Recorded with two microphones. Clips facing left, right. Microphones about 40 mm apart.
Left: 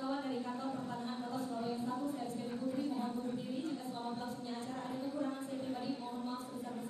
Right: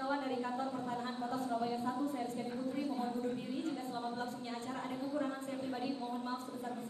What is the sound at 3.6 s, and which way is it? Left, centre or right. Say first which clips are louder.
A woman's voice: right 1 dB; right.